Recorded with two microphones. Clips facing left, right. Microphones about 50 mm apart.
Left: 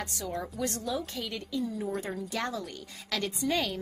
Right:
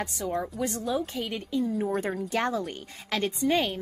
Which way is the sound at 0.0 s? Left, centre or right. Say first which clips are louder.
Right 5 dB; right.